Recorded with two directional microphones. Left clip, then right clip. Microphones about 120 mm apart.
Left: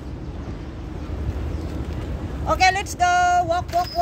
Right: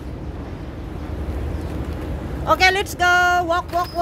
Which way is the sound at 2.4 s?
35° right (ahead or behind).